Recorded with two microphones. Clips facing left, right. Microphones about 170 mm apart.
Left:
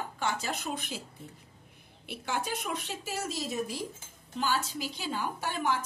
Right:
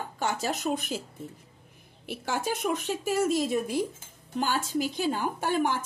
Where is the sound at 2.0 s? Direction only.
45° right (ahead or behind).